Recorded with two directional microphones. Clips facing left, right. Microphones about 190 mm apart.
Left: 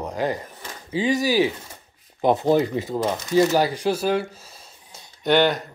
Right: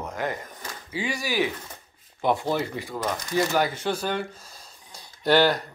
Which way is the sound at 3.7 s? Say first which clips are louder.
Left 6 dB; 10° left (ahead or behind).